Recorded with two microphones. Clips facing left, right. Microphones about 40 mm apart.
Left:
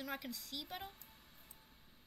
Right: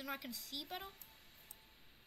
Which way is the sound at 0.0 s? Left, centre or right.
Centre.